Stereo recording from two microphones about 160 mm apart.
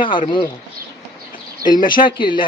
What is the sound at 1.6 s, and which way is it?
Speech, 30° left (ahead or behind).